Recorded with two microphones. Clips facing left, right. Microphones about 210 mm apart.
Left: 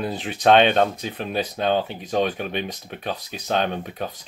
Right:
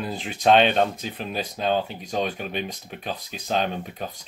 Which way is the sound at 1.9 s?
Centre (ahead or behind).